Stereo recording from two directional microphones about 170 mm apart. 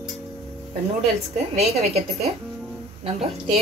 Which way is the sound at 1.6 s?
35° right (ahead or behind).